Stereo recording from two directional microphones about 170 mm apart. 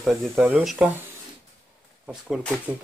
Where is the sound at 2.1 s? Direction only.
5° right (ahead or behind).